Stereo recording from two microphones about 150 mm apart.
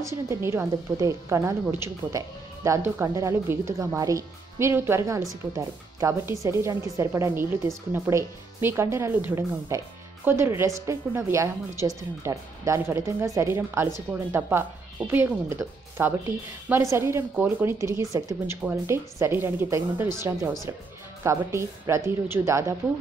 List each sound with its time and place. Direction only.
0.0 s a woman's voice: 20° right (ahead or behind)